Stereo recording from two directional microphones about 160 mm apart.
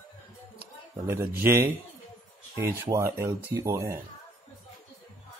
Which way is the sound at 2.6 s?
20° right (ahead or behind).